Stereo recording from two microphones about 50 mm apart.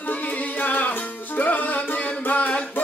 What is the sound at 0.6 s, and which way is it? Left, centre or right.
Music, left.